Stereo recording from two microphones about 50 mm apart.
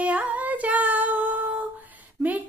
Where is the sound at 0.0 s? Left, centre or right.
Right.